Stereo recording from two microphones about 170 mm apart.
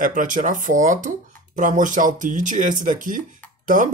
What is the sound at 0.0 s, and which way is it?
Speech, 50° right (ahead or behind).